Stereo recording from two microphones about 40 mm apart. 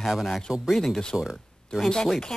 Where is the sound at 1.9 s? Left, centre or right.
Centre.